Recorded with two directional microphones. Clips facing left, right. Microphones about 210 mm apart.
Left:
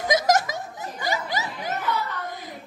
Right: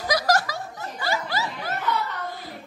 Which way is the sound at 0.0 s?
20° left (ahead or behind).